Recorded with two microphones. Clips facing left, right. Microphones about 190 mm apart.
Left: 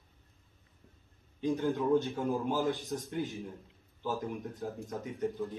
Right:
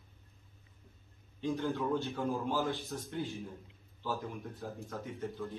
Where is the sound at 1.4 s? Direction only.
15° left (ahead or behind).